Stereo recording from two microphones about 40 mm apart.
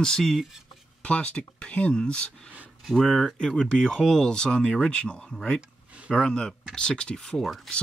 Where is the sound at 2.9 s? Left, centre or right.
Centre; by 5.2 s left.